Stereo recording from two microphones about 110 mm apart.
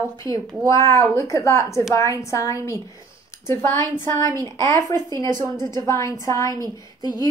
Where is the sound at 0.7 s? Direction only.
25° left (ahead or behind).